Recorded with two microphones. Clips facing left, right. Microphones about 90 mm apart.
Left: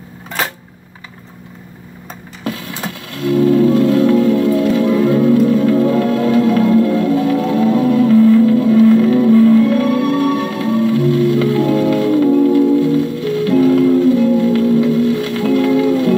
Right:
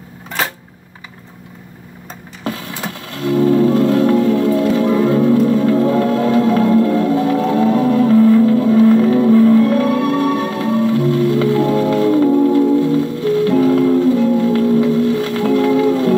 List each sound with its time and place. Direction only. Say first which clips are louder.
3.3 s music: left 1 dB; 35° right (ahead or behind)